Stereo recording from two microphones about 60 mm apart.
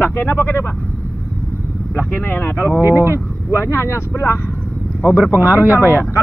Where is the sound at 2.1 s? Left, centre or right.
Left.